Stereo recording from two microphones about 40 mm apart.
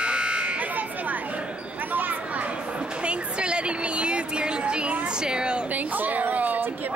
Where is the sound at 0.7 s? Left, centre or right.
Right.